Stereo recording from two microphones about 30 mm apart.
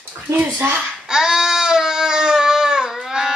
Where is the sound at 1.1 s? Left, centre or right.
Right.